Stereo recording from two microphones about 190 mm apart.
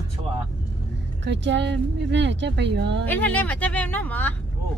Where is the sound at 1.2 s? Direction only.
65° right (ahead or behind).